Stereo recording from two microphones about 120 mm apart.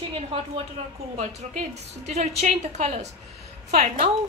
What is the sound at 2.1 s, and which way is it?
A woman's voice, 70° right (ahead or behind).